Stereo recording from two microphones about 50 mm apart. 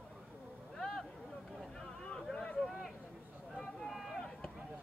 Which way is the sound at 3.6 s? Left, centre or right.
Centre.